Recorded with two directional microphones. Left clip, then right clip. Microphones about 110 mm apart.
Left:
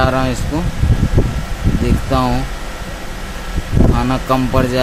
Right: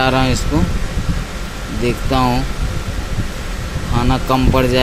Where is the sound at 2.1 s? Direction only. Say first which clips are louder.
Even; 25° left (ahead or behind).